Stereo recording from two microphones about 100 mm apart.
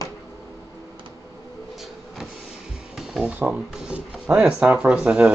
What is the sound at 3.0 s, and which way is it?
Filing, 5° right (ahead or behind).